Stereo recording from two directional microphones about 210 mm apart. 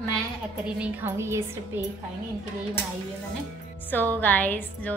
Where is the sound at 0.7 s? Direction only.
10° right (ahead or behind).